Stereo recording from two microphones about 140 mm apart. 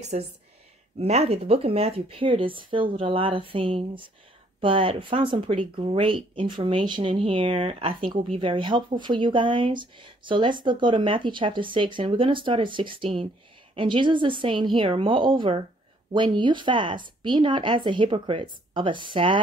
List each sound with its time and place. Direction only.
0.1 s a woman's voice: 55° right (ahead or behind); by 19.4 s 35° right (ahead or behind)